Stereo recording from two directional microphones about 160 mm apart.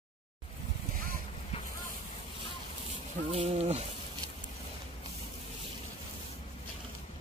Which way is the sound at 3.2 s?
40° right (ahead or behind).